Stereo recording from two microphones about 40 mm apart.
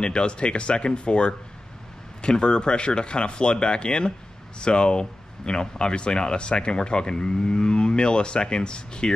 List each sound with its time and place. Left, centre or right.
0.0 s speech: left